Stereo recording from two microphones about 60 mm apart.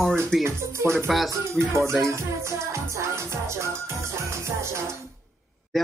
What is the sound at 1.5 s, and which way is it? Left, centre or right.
Speech, right.